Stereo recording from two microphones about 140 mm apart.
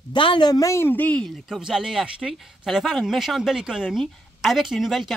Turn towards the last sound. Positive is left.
turn(degrees=0)  # may be behind; listen again after turning